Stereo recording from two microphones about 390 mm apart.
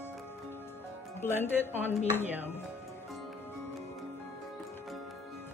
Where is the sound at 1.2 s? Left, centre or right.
Centre.